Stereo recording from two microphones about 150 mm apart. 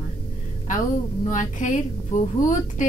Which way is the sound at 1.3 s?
55° left (ahead or behind).